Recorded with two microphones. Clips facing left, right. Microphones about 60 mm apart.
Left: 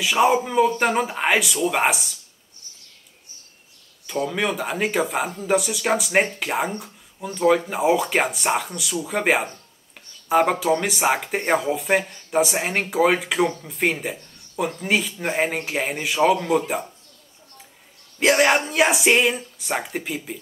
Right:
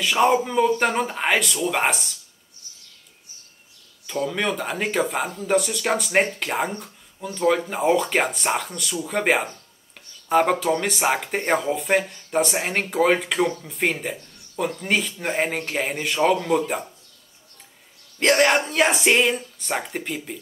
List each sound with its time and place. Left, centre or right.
0.0 s speech: centre
4.1 s speech: centre
18.2 s speech: centre